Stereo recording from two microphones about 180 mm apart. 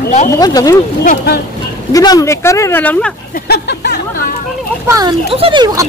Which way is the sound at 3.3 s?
60° left (ahead or behind).